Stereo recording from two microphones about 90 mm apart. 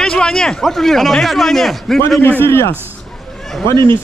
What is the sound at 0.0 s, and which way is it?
A man's voice, 5° left (ahead or behind).